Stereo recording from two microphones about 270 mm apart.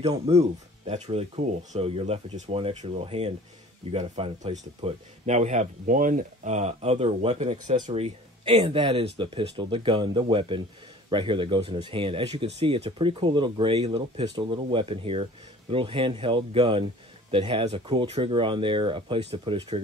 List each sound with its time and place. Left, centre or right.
0.0 s speech: right